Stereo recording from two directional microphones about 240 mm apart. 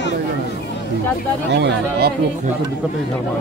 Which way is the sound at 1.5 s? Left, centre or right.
Right.